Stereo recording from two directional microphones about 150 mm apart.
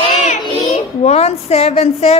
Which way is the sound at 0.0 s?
50° left (ahead or behind).